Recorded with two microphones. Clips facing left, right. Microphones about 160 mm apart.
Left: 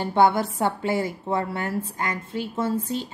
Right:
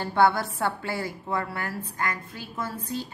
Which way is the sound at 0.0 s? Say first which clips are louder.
Left 3 dB; 20° left (ahead or behind).